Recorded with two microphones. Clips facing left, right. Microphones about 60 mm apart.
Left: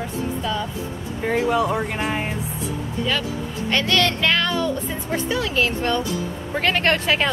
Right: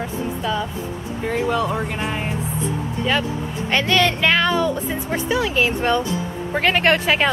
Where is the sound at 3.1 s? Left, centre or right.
Centre.